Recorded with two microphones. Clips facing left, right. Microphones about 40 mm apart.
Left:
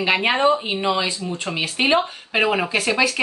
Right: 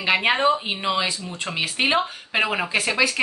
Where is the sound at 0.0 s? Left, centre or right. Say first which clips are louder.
Left 1 dB; centre.